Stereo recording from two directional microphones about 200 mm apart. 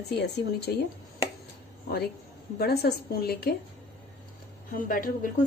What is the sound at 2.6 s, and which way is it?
Speech, 55° left (ahead or behind).